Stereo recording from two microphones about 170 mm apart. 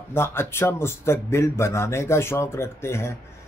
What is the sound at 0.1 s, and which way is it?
Speech, 15° left (ahead or behind).